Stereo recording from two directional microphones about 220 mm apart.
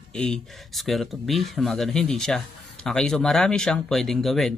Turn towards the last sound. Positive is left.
turn(degrees=0)  # may be behind; listen again after turning